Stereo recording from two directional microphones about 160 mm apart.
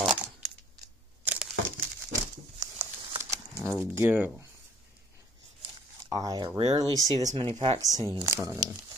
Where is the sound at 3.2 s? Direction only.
20° right (ahead or behind).